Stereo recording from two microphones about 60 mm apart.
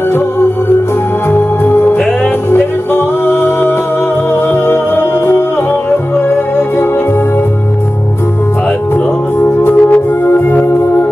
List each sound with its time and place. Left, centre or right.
1.3 s music: left
9.4 s music: left